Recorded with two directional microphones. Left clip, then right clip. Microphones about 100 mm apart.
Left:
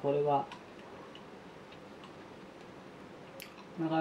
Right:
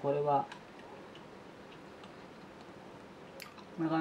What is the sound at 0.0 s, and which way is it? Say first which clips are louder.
Speech: left 1 dB; 25° right (ahead or behind).